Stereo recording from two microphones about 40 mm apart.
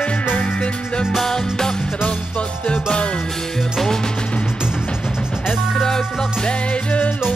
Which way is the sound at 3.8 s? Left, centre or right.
Centre.